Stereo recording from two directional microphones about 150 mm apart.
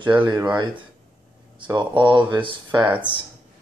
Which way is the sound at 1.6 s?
30° right (ahead or behind).